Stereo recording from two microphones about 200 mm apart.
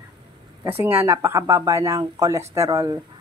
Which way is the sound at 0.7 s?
10° right (ahead or behind).